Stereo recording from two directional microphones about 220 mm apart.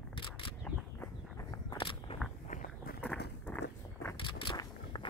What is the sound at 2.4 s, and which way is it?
Walk, 40° left (ahead or behind).